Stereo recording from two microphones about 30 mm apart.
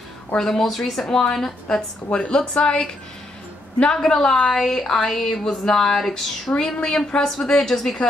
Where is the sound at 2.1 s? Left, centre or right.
Left.